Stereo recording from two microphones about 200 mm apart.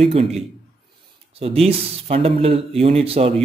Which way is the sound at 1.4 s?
30° right (ahead or behind).